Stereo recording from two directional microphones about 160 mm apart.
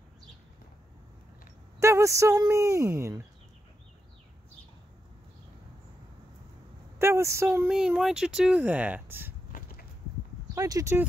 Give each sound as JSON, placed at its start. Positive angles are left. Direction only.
{"t": 1.8, "sound": "a woman's voice", "side_deg": -20}
{"t": 7.0, "sound": "a woman's voice", "side_deg": -15}
{"t": 7.7, "sound": "speech", "side_deg": -5}
{"t": 9.5, "sound": "a sound", "side_deg": 65}
{"t": 10.5, "sound": "speech", "side_deg": -20}